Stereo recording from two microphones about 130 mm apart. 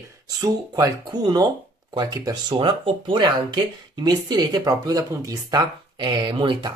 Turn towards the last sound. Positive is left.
turn(degrees=-40)  # may be behind; listen again after turning